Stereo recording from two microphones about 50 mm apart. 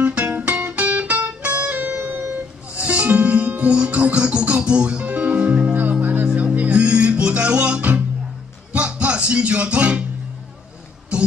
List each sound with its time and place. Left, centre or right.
0.0 s music: right
2.3 s a sound: right
3.1 s music: right